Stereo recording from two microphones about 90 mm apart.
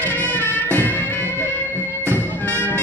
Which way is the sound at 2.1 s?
20° left (ahead or behind).